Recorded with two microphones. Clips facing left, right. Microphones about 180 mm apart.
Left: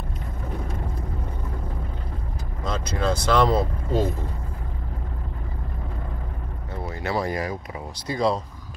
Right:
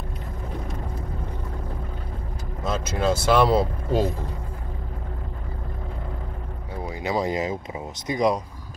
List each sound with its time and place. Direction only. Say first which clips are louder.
2.6 s speech: right 2 dB; 5° right (ahead or behind)
6.8 s speech: right 1 dB; 15° right (ahead or behind)